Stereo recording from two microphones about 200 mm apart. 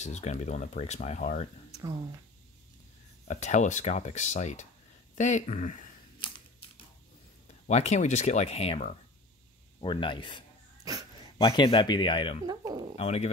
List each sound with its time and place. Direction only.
0.0 s speech: 35° left (ahead or behind)
3.3 s speech: 35° left (ahead or behind)
7.6 s speech: 35° left (ahead or behind)
10.8 s dog: 20° right (ahead or behind)
11.3 s speech: 25° left (ahead or behind)
12.4 s speech: 20° right (ahead or behind)
12.9 s speech: 30° left (ahead or behind)